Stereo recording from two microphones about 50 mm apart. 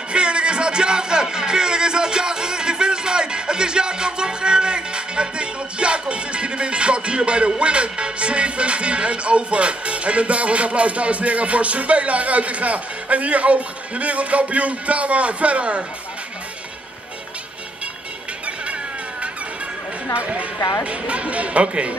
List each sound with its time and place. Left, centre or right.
0.1 s music: centre
20.2 s speech: right